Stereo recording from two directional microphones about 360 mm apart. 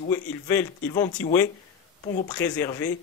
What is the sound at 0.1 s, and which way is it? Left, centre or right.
Speech, centre.